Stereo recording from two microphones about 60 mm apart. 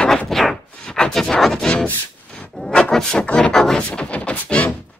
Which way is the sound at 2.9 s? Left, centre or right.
Centre.